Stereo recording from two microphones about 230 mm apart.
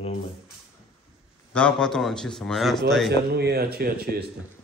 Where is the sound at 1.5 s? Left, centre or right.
Centre.